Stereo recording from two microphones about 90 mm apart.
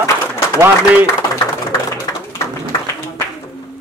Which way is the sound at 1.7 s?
40° left (ahead or behind).